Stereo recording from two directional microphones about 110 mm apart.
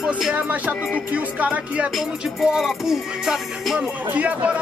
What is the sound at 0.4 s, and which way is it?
Speech, 15° right (ahead or behind).